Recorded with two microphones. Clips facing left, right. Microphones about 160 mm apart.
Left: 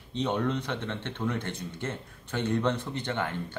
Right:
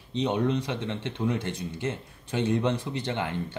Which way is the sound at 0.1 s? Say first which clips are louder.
Right 3 dB; 15° right (ahead or behind).